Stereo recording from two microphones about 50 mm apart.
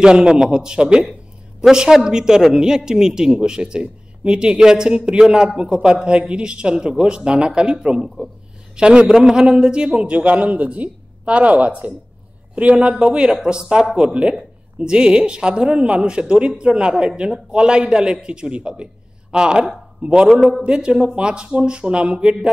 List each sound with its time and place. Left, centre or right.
0.0 s a man's voice: centre
10.1 s a man's voice: right
20.6 s speech: centre